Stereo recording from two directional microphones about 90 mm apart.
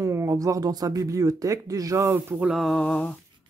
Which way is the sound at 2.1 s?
20° right (ahead or behind).